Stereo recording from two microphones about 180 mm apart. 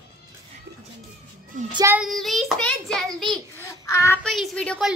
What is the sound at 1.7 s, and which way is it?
Speech, 20° right (ahead or behind).